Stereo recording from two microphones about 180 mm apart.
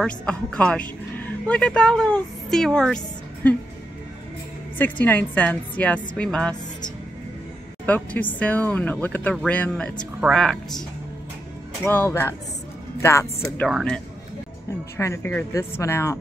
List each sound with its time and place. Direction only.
0.0 s speech: 5° left (ahead or behind)
4.7 s speech: 10° left (ahead or behind)
7.8 s speech: 10° left (ahead or behind)
11.8 s speech: 10° left (ahead or behind)
13.7 s speech: centre (ahead or behind)
15.0 s speech: 15° left (ahead or behind)